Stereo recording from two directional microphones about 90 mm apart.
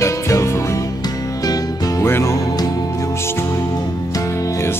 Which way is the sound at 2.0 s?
25° left (ahead or behind).